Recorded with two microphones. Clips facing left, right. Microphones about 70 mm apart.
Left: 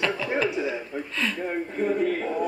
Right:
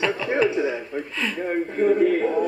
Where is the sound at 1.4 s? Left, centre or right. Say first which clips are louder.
Right 9 dB; right.